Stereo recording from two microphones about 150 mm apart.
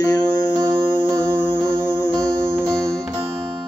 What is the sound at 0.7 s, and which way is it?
Music, 35° right (ahead or behind).